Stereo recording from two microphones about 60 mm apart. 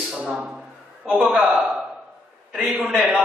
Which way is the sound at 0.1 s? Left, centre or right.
Centre.